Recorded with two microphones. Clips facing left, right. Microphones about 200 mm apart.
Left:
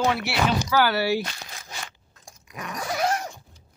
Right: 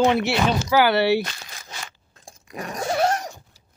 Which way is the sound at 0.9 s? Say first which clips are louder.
Right 5 dB; 70° right (ahead or behind).